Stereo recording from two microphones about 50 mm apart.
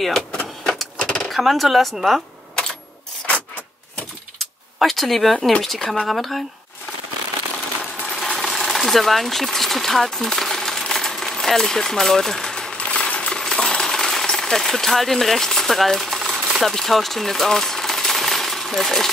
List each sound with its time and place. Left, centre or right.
0.3 s vehicle: centre
1.3 s speech: centre
4.7 s speech: centre
8.1 s sewing machine: centre
12.7 s coin: left
13.4 s jackhammer: centre
16.2 s sewing machine: centre
16.7 s coin: centre